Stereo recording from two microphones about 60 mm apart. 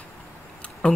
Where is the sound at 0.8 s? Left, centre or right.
Centre.